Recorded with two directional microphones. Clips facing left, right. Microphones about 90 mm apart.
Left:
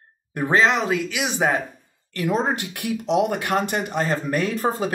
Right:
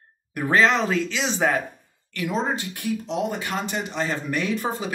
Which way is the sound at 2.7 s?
75° left (ahead or behind).